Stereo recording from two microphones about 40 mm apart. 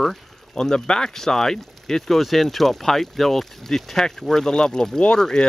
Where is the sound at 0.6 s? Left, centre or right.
Centre.